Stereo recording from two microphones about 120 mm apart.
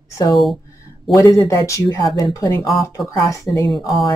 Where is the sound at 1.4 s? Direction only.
25° left (ahead or behind).